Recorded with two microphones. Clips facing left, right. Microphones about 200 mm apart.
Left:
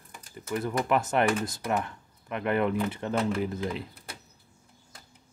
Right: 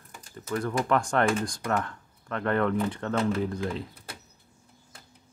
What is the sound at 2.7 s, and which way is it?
Speech, centre (ahead or behind).